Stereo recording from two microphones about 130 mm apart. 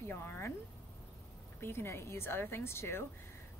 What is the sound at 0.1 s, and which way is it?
Speech, 20° left (ahead or behind).